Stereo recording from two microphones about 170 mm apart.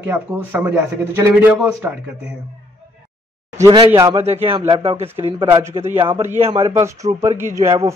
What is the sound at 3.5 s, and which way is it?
Speech, 15° right (ahead or behind).